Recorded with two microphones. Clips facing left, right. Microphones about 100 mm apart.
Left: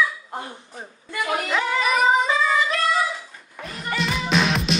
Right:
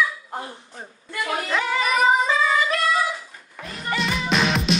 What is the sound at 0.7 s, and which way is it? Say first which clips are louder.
Female singing: left 1 dB; 5° left (ahead or behind).